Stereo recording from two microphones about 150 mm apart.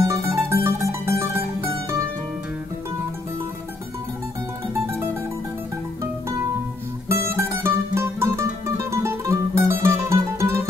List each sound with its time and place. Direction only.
0.0 s mandolin: 20° right (ahead or behind)
7.1 s music: 20° right (ahead or behind)